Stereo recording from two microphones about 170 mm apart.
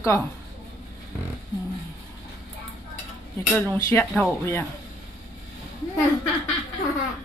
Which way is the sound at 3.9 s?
15° left (ahead or behind).